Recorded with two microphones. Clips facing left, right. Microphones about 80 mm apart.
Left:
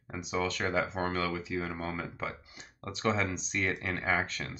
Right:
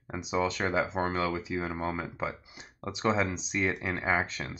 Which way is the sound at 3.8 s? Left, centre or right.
Centre.